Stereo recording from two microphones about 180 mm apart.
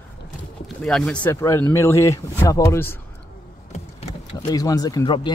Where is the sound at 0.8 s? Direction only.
Centre (ahead or behind).